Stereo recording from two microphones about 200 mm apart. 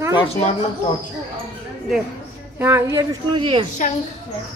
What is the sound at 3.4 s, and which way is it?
Speech, 25° right (ahead or behind).